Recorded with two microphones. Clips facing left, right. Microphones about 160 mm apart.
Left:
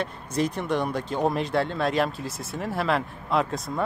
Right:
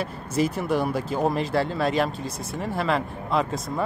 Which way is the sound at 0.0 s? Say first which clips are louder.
Right 2 dB; 5° right (ahead or behind).